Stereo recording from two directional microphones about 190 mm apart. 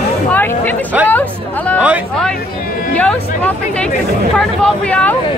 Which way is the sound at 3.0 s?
5° left (ahead or behind).